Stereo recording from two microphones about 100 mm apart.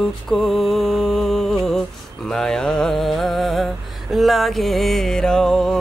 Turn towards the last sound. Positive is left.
turn(degrees=5)  # may be behind; listen again after turning